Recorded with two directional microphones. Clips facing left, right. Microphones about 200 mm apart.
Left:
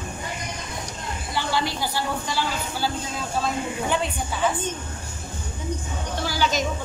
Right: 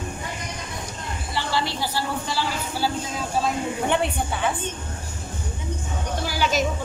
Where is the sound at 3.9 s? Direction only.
60° right (ahead or behind).